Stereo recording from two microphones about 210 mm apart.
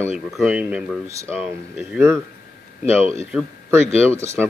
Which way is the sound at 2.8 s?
30° left (ahead or behind).